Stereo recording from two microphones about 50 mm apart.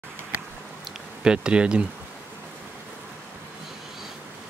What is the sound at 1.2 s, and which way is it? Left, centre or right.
Speech, centre.